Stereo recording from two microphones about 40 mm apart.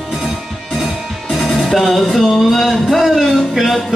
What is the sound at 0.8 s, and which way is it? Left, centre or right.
Music, centre.